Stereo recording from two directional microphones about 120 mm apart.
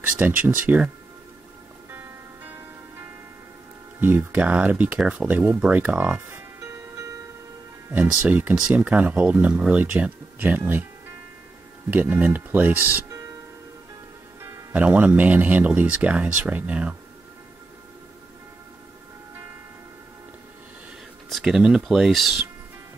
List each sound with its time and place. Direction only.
0.0 s speech: 10° right (ahead or behind)
1.9 s music: 15° right (ahead or behind)
4.0 s speech: 15° right (ahead or behind)
7.9 s speech: 15° right (ahead or behind)
14.4 s speech: 15° right (ahead or behind)
21.3 s speech: centre (ahead or behind)